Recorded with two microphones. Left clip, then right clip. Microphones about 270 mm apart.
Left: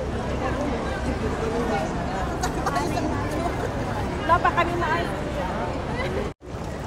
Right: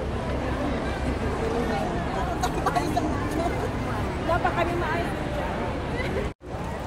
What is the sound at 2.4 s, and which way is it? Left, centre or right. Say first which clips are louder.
Chatter: even; centre.